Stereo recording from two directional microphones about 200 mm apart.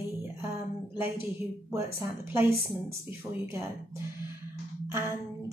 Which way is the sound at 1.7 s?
10° right (ahead or behind).